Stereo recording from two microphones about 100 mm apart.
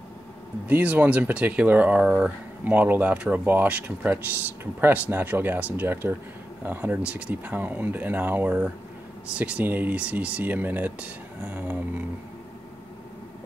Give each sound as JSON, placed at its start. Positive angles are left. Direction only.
{"t": 0.7, "sound": "speech", "side_deg": -15}